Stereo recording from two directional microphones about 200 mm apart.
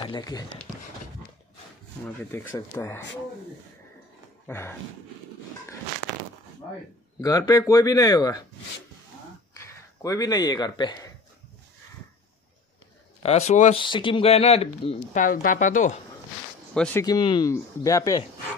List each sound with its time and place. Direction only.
0.0 s speech: 20° left (ahead or behind)
2.0 s speech: 5° left (ahead or behind)
4.5 s speech: 10° left (ahead or behind)
7.2 s speech: 15° left (ahead or behind)
9.6 s speech: 15° left (ahead or behind)
13.2 s speech: 35° left (ahead or behind)
13.8 s speech: 25° left (ahead or behind)
15.2 s speech: 40° left (ahead or behind)
16.7 s speech: 5° left (ahead or behind)
17.0 s speech: 20° left (ahead or behind)